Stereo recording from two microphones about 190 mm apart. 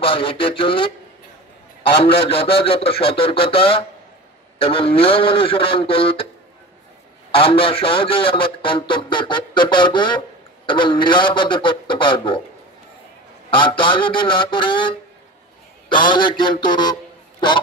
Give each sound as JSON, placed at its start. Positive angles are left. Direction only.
{"t": 0.0, "sound": "a man's voice", "side_deg": 30}
{"t": 7.2, "sound": "a man's voice", "side_deg": 30}
{"t": 13.6, "sound": "a man's voice", "side_deg": 25}
{"t": 16.1, "sound": "a man's voice", "side_deg": 25}